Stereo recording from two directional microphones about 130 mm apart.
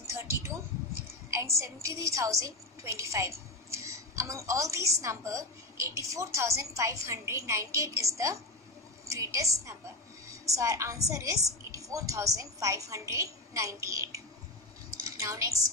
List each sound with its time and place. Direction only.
1.3 s a woman's voice: 20° right (ahead or behind)